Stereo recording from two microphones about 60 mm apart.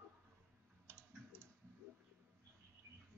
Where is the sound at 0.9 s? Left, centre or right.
Right.